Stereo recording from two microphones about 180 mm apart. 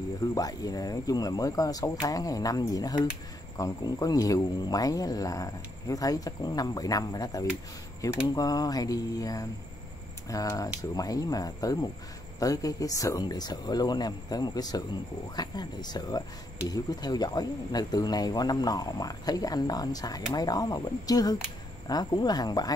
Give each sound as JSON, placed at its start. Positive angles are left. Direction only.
{"t": 0.3, "sound": "speech", "side_deg": 20}